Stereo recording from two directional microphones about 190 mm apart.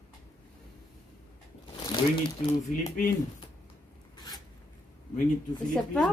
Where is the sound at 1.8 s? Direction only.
25° left (ahead or behind).